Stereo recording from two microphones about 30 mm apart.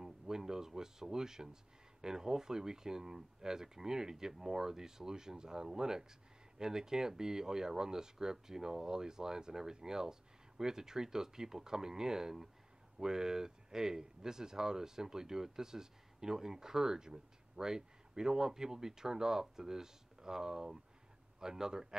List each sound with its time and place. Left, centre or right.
0.0 s speech: centre